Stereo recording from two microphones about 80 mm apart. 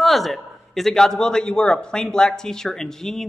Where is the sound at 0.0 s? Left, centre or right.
Centre.